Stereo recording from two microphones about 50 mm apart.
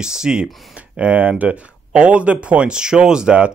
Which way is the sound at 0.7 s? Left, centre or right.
Right.